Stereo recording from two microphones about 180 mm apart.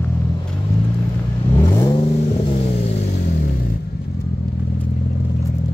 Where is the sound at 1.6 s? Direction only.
20° left (ahead or behind).